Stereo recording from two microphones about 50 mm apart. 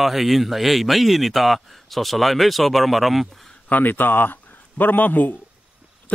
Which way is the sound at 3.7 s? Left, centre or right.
Left.